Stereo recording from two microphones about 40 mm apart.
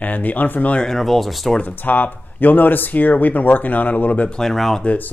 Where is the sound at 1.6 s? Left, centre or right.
Left.